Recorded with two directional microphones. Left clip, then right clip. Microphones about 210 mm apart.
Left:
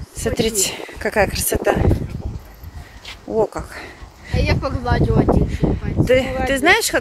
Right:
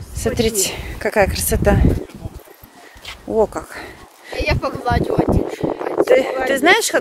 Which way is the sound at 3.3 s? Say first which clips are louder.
Right 2 dB; 10° right (ahead or behind).